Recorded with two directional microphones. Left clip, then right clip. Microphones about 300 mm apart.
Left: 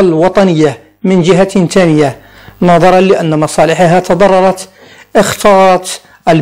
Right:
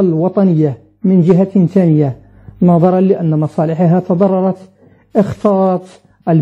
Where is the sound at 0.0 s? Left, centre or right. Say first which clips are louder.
Left 6 dB; left.